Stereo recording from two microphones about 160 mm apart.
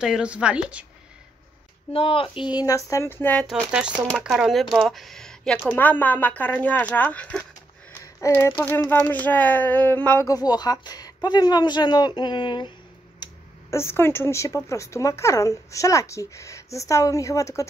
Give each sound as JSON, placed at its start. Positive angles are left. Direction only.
{"t": 0.0, "sound": "a woman's voice", "side_deg": -5}
{"t": 1.9, "sound": "speech", "side_deg": 35}
{"t": 3.4, "sound": "speech", "side_deg": -5}
{"t": 10.2, "sound": "speech", "side_deg": 25}
{"t": 13.2, "sound": "speech", "side_deg": 15}